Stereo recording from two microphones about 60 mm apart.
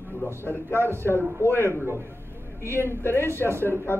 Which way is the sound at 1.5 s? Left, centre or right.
Left.